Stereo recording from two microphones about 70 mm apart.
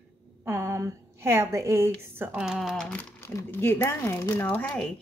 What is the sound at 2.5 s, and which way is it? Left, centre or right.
Speech, centre.